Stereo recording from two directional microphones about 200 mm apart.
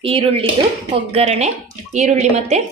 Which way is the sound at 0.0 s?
25° right (ahead or behind).